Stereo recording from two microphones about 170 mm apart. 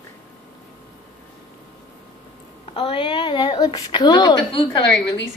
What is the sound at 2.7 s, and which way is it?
A woman's voice, 30° left (ahead or behind).